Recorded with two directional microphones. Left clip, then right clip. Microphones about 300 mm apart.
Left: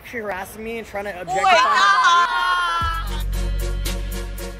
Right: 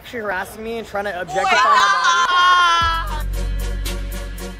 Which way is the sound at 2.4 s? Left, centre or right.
Right.